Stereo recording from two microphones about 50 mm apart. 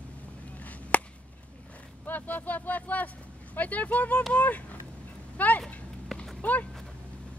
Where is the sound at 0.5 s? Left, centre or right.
Left.